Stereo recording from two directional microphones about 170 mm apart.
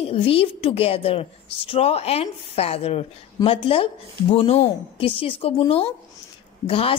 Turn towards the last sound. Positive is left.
turn(degrees=35)  # may be behind; listen again after turning